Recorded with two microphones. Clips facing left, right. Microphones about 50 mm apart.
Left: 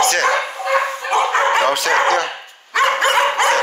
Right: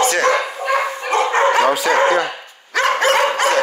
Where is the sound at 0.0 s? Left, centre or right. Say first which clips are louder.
Even; left.